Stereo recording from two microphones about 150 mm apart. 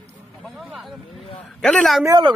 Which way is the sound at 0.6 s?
Centre (ahead or behind).